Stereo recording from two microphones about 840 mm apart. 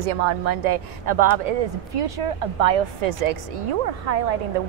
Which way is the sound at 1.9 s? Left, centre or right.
Right.